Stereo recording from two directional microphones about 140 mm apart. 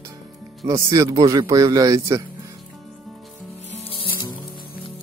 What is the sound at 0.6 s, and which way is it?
Speech, 25° right (ahead or behind).